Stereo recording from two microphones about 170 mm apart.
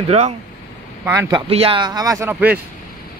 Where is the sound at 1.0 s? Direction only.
20° right (ahead or behind).